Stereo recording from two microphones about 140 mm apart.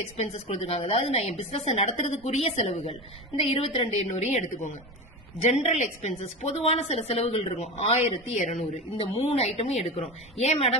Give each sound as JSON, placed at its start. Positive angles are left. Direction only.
{"t": 0.2, "sound": "a woman's voice", "side_deg": 45}
{"t": 8.7, "sound": "a woman's voice", "side_deg": 40}